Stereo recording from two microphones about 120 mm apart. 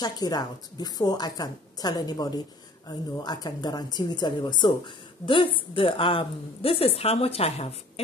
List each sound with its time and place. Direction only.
0.0 s a woman's voice: 35° left (ahead or behind); by 7.7 s 60° left (ahead or behind)